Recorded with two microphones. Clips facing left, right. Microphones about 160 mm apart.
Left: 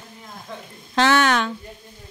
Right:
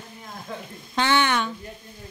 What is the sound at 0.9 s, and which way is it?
Speech, 90° left.